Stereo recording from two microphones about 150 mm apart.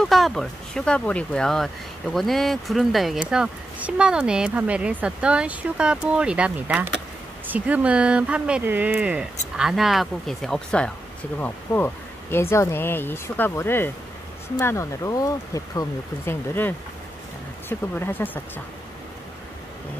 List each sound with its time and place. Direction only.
0.0 s speech: centre (ahead or behind)